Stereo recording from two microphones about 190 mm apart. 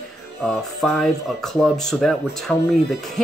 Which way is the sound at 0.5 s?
5° left (ahead or behind).